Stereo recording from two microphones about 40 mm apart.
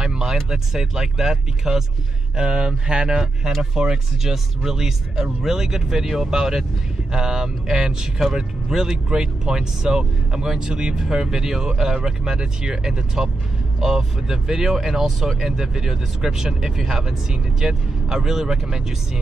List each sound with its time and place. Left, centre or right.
0.0 s a sound: centre
0.5 s speech: centre
3.8 s speech: centre